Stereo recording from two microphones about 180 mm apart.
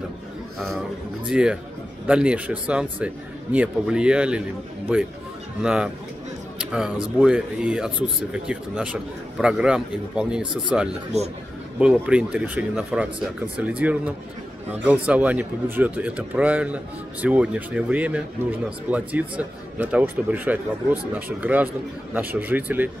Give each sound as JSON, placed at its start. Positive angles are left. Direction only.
{"t": 1.3, "sound": "a man's voice", "side_deg": -5}
{"t": 5.6, "sound": "a man's voice", "side_deg": -5}
{"t": 11.1, "sound": "a man's voice", "side_deg": -35}
{"t": 11.8, "sound": "a man's voice", "side_deg": -5}